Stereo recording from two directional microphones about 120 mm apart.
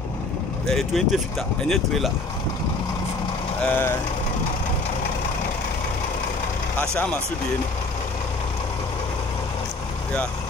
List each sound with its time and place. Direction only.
0.7 s speech: centre (ahead or behind)
3.6 s speech: 15° left (ahead or behind)